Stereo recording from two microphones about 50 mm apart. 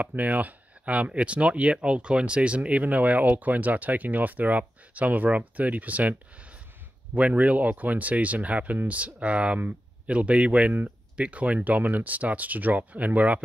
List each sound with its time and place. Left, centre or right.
0.0 s speech: right
7.2 s speech: right